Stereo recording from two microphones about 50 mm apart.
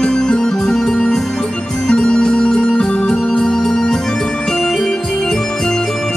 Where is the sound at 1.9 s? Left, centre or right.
Centre.